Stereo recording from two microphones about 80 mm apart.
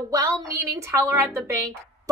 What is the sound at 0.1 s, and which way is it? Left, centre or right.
A woman's voice, right.